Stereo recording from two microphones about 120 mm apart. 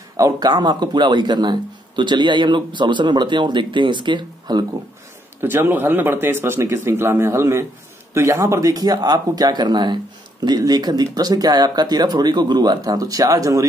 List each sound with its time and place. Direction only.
0.2 s speech: 35° right (ahead or behind)
5.4 s speech: 20° right (ahead or behind)